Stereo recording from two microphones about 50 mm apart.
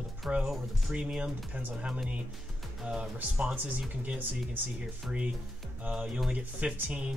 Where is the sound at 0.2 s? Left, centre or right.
Centre.